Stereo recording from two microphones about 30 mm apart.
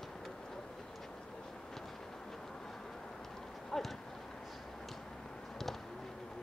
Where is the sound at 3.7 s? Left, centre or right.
Centre.